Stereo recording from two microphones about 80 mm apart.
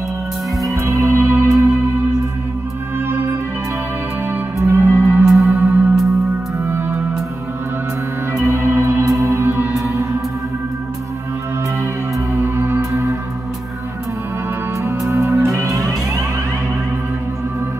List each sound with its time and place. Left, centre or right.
0.6 s music: right
3.1 s music: right
4.6 s music: right
4.8 s music: right
5.2 s music: centre
6.6 s music: right
8.4 s music: right
12.4 s music: right
14.8 s music: right